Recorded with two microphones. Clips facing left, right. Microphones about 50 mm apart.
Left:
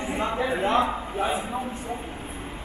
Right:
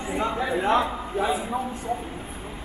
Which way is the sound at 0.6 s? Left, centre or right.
Left.